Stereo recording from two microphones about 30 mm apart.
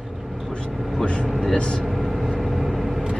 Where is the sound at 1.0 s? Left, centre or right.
Left.